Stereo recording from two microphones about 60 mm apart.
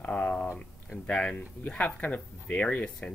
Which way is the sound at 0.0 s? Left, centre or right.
Centre.